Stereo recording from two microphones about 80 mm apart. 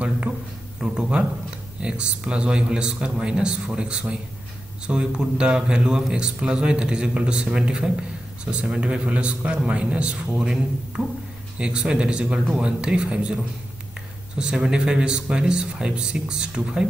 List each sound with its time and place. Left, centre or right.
0.7 s speech: centre